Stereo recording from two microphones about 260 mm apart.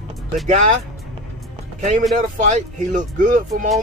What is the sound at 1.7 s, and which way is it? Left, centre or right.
A man's voice, right.